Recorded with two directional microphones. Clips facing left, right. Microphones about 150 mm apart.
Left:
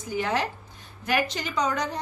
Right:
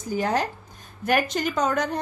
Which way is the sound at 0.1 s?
40° right (ahead or behind).